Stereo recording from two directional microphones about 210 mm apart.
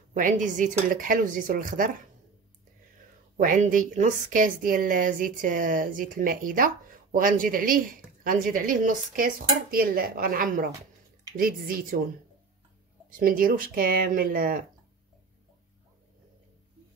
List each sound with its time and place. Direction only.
0.1 s a woman's voice: 40° right (ahead or behind)
3.3 s a woman's voice: 40° right (ahead or behind)
13.1 s speech: 45° right (ahead or behind)